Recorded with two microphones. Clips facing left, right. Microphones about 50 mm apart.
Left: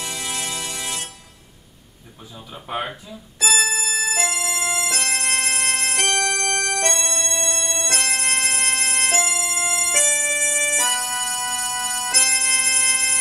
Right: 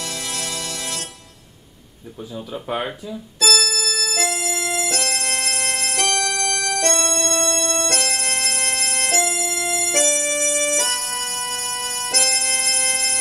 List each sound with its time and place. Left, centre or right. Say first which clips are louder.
0.0 s music: even; centre
2.3 s speech: right 3 dB; centre
3.3 s organ: even; left
5.0 s organ: left 1 dB; centre
12.2 s music: even; centre